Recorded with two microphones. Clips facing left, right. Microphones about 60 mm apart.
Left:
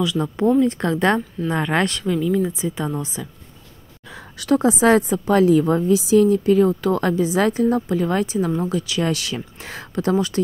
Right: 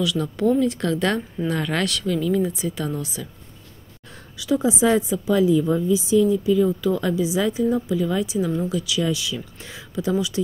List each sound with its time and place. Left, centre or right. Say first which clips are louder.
0.0 s speech: left 2 dB; left
2.1 s speech: left 1 dB; centre
2.4 s speech: left 2 dB; left
4.4 s a woman's voice: left 3 dB; left
8.5 s speech: left 2 dB; left
9.0 s a woman's voice: left 2 dB; left